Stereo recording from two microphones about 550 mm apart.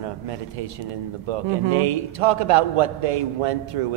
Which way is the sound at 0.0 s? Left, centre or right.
Right.